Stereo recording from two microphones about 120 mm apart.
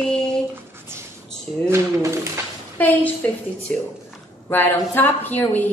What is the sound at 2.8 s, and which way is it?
Speech, 15° left (ahead or behind).